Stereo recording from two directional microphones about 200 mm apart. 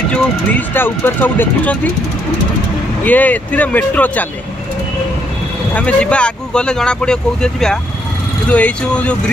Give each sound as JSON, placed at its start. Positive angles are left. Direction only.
{"t": 0.1, "sound": "speech", "side_deg": 10}
{"t": 3.0, "sound": "speech", "side_deg": 10}
{"t": 5.8, "sound": "speech", "side_deg": 5}